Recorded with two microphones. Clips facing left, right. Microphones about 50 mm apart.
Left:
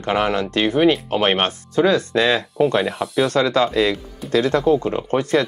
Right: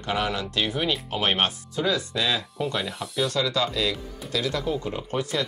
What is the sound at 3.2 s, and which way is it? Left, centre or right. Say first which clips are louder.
Speech: left 7 dB; left.